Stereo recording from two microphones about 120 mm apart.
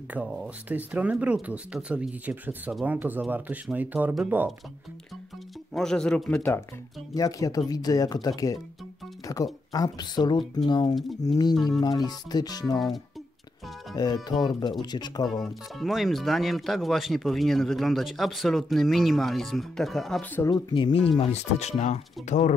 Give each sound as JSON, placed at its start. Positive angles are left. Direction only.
{"t": 0.1, "sound": "speech", "side_deg": -10}
{"t": 5.7, "sound": "speech", "side_deg": 5}
{"t": 7.2, "sound": "speech", "side_deg": 30}
{"t": 11.0, "sound": "speech", "side_deg": 0}
{"t": 11.8, "sound": "speech", "side_deg": 35}
{"t": 13.9, "sound": "speech", "side_deg": 35}
{"t": 15.2, "sound": "speech", "side_deg": 0}
{"t": 20.4, "sound": "speech", "side_deg": 40}
{"t": 21.2, "sound": "speech", "side_deg": 65}